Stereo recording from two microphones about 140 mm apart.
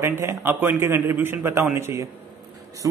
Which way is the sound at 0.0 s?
15° right (ahead or behind).